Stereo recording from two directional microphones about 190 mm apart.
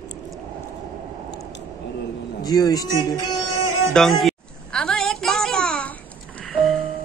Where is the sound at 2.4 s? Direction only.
20° left (ahead or behind).